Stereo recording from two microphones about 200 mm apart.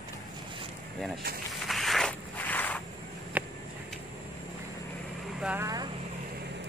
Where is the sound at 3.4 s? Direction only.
5° right (ahead or behind).